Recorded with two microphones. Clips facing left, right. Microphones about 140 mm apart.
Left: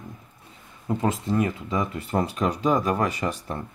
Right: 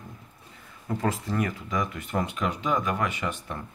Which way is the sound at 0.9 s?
20° left (ahead or behind).